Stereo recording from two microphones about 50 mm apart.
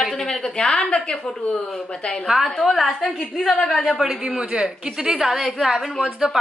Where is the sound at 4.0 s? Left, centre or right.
Centre.